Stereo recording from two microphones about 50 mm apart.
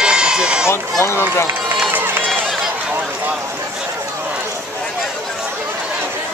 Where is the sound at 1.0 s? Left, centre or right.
Left.